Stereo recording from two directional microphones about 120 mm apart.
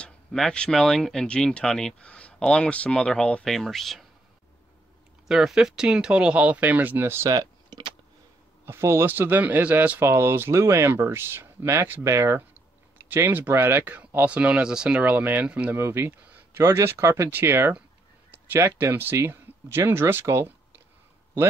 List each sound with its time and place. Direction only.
0.0 s speech: 5° left (ahead or behind)
5.3 s speech: 5° right (ahead or behind)
7.2 s computer keyboard: 35° right (ahead or behind)
8.6 s speech: 20° right (ahead or behind)